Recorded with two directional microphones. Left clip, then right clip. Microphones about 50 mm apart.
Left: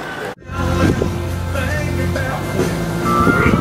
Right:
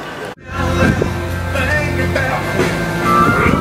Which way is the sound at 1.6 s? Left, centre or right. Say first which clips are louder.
Right 6 dB; centre.